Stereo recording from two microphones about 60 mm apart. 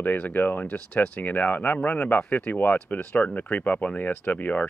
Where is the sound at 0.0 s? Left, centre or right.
Left.